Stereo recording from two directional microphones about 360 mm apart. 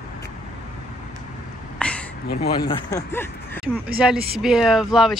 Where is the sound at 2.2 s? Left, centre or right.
Left.